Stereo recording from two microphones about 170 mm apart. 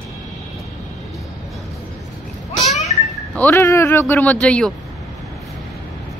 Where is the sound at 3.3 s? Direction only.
10° left (ahead or behind).